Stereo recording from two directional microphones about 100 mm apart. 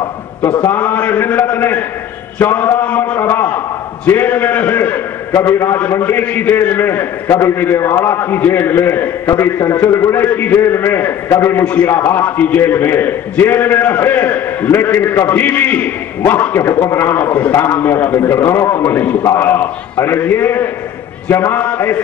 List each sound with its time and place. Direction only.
0.7 s a man's voice: 15° left (ahead or behind)